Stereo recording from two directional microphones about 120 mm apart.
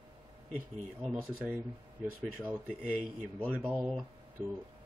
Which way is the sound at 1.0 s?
5° right (ahead or behind).